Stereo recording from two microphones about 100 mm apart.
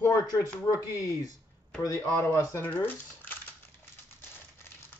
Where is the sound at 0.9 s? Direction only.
35° left (ahead or behind).